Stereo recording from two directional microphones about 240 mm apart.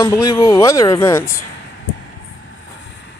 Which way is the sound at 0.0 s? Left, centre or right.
Centre.